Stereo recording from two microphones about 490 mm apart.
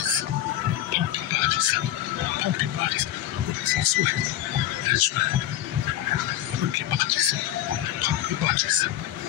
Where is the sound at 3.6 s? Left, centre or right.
Right.